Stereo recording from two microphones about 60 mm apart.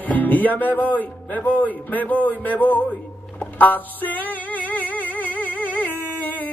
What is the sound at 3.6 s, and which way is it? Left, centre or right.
Music, left.